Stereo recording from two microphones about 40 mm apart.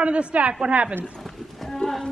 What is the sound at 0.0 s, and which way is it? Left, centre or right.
Speech, right.